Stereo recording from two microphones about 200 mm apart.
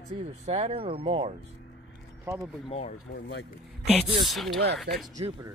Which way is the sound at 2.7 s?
30° left (ahead or behind).